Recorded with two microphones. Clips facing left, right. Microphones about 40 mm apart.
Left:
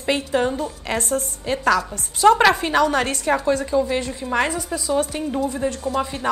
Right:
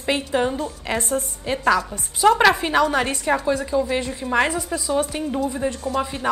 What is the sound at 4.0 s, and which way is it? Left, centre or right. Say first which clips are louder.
A woman's voice: right 1 dB; right.